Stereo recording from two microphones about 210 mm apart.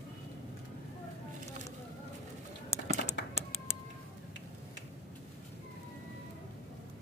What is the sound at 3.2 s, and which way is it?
Typing, 55° left (ahead or behind).